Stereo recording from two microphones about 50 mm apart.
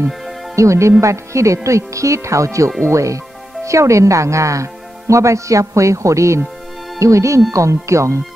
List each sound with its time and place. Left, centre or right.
0.6 s speech: right